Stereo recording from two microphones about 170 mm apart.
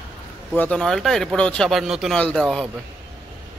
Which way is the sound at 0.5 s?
5° left (ahead or behind).